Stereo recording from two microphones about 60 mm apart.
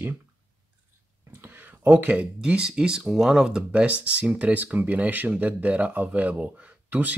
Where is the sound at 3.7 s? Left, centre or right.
Right.